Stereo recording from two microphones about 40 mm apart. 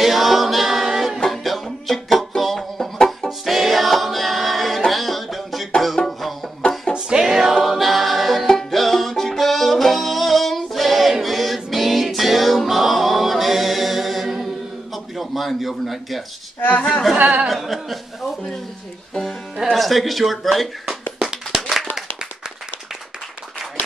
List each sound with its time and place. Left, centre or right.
0.0 s a capella: centre
1.3 s music: centre
6.0 s music: centre
6.9 s music: right
7.2 s music: centre
7.5 s choir: centre
8.5 s music: centre
15.1 s a sound: centre
17.5 s chuckle: centre
19.5 s music: centre
21.5 s clapping: centre